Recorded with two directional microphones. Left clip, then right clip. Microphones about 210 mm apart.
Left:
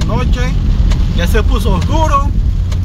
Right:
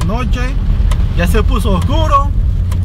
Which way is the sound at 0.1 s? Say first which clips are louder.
Left 3 dB; 15° right (ahead or behind).